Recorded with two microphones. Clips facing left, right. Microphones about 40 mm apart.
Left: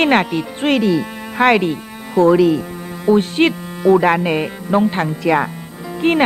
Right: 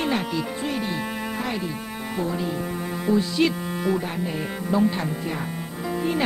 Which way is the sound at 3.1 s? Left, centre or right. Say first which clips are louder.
Left 7 dB; left.